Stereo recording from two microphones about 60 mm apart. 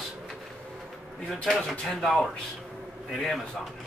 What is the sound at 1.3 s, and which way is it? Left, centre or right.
Speech, centre.